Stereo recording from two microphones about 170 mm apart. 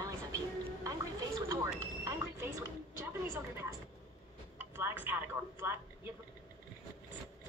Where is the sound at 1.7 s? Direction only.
15° right (ahead or behind).